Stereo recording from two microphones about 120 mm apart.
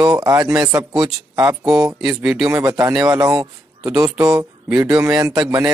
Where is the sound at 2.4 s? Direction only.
30° right (ahead or behind).